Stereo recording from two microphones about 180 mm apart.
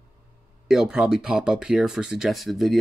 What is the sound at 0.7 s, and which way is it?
Speech, 5° right (ahead or behind).